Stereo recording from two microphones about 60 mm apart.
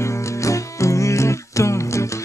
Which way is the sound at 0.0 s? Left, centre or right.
Left.